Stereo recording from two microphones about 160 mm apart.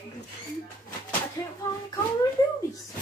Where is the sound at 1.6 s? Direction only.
20° left (ahead or behind).